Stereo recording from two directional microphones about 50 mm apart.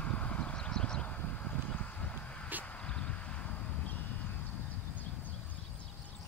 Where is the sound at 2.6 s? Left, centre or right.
Left.